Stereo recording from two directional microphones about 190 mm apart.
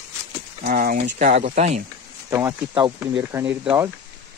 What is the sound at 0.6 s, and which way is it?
Speech, 50° right (ahead or behind).